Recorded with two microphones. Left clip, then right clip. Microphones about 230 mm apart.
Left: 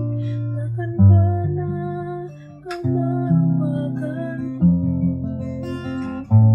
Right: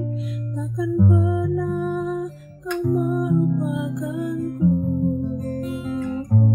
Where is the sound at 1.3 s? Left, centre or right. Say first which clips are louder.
Right 3 dB; right.